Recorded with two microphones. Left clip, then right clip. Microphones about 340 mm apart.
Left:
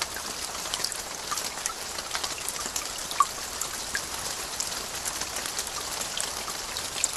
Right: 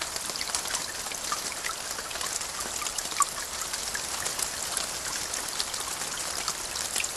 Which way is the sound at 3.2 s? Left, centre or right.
Centre.